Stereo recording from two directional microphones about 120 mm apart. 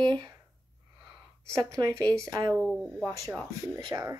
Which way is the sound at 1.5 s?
30° right (ahead or behind).